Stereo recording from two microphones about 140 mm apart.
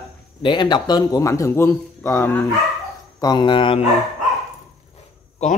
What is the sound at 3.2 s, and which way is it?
Speech, 30° left (ahead or behind).